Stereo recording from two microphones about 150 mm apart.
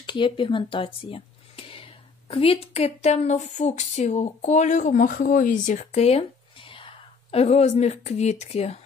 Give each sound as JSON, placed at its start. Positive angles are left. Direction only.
{"t": 0.0, "sound": "speech", "side_deg": 35}